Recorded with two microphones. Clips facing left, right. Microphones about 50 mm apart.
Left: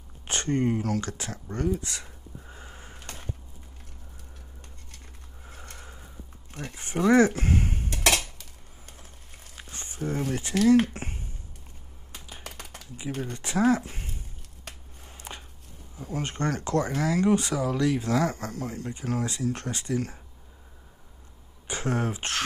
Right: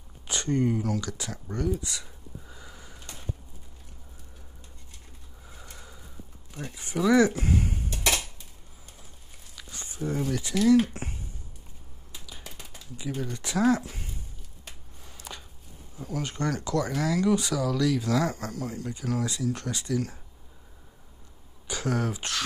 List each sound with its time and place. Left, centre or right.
0.3 s speech: left
2.4 s a sound: left
5.5 s a sound: left
6.5 s dishes: left
9.6 s speech: left
12.4 s a sound: left
13.2 s speech: left
15.0 s chopping: left
16.0 s speech: left
21.6 s speech: left